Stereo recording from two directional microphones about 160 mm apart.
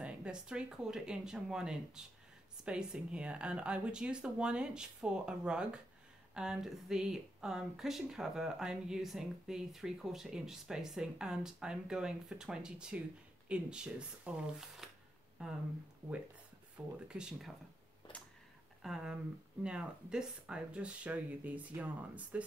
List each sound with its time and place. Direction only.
0.0 s speech: 5° right (ahead or behind)
16.8 s speech: 10° right (ahead or behind)
18.0 s a sound: 30° left (ahead or behind)
18.8 s speech: centre (ahead or behind)